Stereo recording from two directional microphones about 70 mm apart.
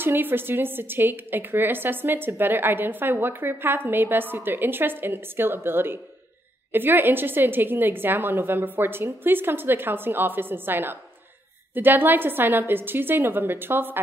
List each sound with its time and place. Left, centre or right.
0.0 s a woman's voice: right